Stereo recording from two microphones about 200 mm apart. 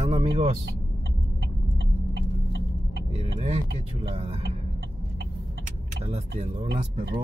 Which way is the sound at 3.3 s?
30° right (ahead or behind).